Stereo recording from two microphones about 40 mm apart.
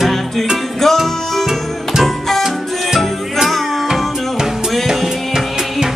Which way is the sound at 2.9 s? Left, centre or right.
Centre.